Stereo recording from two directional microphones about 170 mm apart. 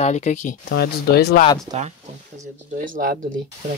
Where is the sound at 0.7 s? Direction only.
70° left (ahead or behind).